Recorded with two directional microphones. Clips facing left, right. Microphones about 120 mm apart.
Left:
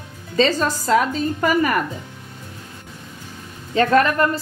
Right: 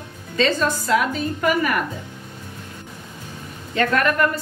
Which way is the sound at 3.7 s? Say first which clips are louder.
Left 3 dB; 30° left (ahead or behind).